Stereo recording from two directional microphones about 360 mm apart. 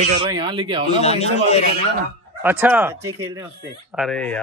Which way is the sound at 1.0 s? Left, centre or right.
Centre.